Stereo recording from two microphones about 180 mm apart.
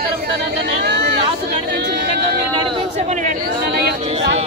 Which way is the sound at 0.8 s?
65° right (ahead or behind).